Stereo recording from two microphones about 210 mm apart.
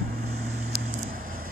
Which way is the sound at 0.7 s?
40° right (ahead or behind).